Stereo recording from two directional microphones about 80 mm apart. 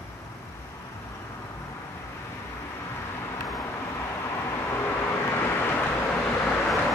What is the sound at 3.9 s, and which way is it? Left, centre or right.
Vehicle, left.